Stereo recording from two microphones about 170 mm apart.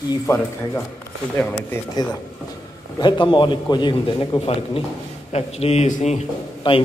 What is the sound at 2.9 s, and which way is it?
A man's voice, 25° left (ahead or behind).